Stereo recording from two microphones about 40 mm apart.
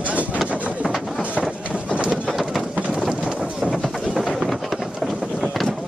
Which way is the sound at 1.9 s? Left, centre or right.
Right.